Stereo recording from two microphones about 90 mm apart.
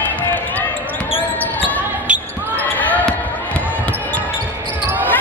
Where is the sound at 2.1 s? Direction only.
10° right (ahead or behind).